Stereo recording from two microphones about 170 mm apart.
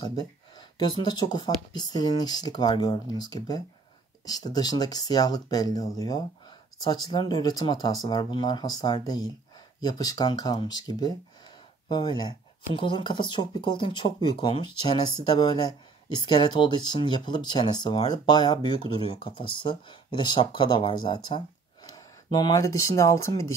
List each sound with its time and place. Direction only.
0.0 s speech: 25° left (ahead or behind)